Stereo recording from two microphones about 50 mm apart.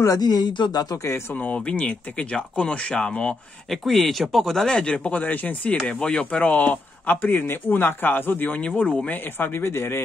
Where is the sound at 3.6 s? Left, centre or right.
Centre.